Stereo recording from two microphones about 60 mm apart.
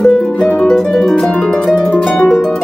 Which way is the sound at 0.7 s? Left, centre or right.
Centre.